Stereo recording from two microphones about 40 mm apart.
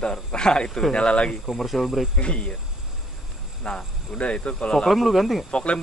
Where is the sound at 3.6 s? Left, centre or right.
Left.